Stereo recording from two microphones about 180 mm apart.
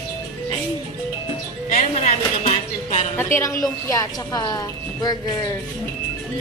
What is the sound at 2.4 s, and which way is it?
Music, 40° left (ahead or behind).